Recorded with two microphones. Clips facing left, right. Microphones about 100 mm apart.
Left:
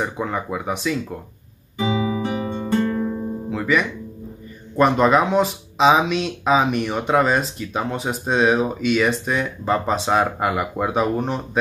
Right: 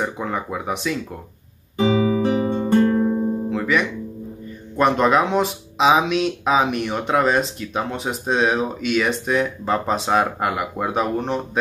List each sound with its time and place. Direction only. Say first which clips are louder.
0.0 s speech: even; centre (ahead or behind)
1.8 s guitar: right 4 dB; 35° right (ahead or behind)
3.4 s guitar: left 4 dB; centre (ahead or behind)
4.7 s speech: left 1 dB; centre (ahead or behind)